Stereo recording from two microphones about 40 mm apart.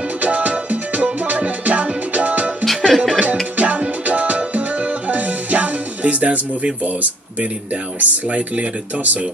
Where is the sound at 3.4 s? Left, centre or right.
Right.